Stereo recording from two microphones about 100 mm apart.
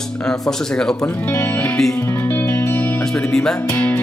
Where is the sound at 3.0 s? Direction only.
5° left (ahead or behind).